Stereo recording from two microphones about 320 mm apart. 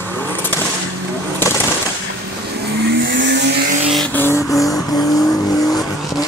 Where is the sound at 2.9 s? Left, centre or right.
Right.